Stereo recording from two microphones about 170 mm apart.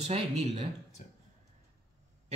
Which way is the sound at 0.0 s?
40° right (ahead or behind).